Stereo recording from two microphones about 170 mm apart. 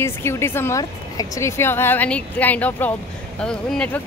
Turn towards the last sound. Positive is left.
turn(degrees=5)  # may be behind; listen again after turning